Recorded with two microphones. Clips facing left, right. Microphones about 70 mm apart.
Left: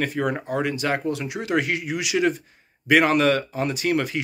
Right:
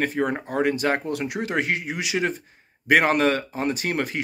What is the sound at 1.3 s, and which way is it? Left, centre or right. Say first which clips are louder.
Speech: left 2 dB; right.